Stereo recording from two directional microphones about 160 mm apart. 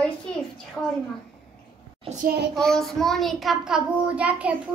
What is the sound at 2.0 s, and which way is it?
Speech, 45° right (ahead or behind).